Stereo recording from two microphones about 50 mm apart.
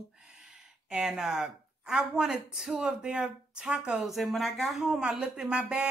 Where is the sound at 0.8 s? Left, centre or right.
Centre.